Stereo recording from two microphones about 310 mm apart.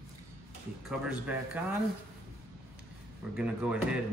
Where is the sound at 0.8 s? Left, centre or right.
Centre.